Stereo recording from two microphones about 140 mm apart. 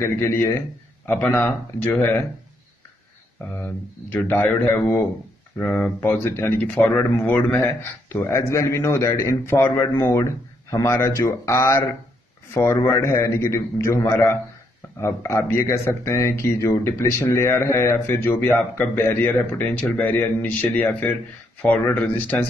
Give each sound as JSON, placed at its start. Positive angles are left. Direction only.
{"t": 0.0, "sound": "speech", "side_deg": 20}
{"t": 3.5, "sound": "speech", "side_deg": 15}